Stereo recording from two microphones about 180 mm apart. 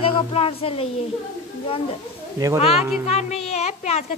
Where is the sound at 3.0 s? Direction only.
35° left (ahead or behind).